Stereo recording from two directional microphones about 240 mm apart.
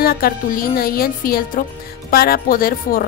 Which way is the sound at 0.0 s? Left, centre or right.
Left.